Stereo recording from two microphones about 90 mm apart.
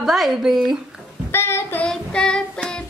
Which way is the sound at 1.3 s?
30° left (ahead or behind).